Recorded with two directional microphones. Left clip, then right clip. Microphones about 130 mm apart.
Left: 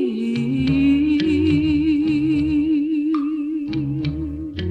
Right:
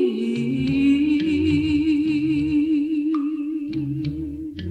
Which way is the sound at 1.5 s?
45° left (ahead or behind).